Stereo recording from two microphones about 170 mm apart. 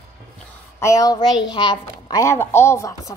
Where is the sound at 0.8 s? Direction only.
20° left (ahead or behind).